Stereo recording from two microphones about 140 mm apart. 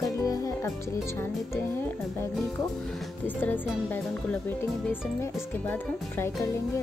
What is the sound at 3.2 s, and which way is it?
A woman's voice, 15° left (ahead or behind).